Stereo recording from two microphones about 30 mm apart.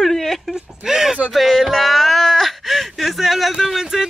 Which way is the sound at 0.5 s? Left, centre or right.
Centre.